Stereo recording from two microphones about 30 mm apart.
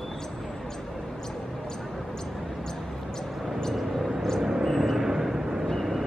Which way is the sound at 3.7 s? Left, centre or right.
Centre.